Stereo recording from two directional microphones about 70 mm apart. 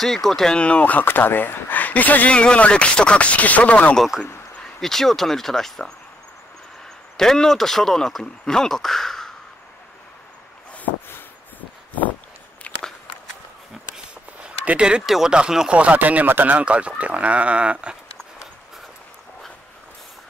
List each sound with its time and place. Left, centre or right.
0.0 s speech: centre
0.6 s speech: centre
4.7 s speech: centre
7.2 s speech: centre
12.7 s walk: centre
13.9 s speech: centre